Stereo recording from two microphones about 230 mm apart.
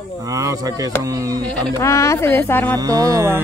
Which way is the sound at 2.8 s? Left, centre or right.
Centre.